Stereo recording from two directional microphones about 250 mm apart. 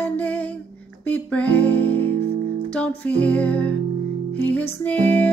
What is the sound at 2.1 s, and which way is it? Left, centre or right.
Music, right.